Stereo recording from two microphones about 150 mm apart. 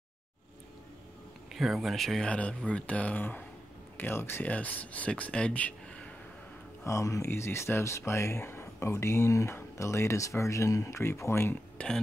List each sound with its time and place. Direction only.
1.5 s speech: centre (ahead or behind)
6.8 s speech: 20° left (ahead or behind)